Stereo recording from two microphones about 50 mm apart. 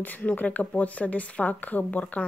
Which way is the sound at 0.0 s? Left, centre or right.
Left.